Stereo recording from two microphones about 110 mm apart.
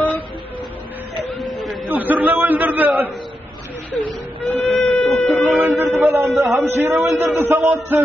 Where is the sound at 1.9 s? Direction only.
15° right (ahead or behind).